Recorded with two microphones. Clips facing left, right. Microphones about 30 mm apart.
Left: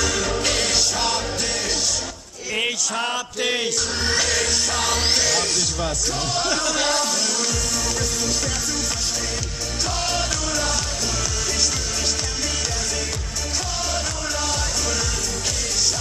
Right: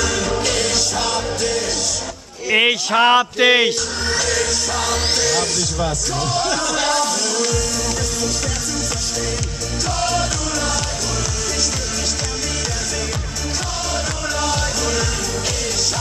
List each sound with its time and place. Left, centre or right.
0.0 s music: centre
2.5 s a man's voice: right
4.0 s music: centre
9.8 s music: centre
13.9 s music: centre